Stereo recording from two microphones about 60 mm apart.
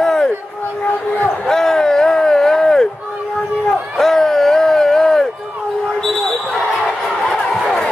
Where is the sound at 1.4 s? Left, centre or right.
Centre.